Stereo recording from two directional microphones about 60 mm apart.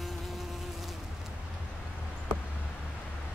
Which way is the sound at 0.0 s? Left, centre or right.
Centre.